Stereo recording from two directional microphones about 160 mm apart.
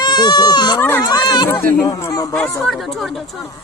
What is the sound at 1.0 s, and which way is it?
Speech, 25° left (ahead or behind).